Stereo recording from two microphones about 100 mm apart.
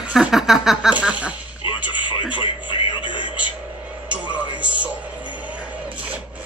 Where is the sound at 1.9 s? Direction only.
50° left (ahead or behind).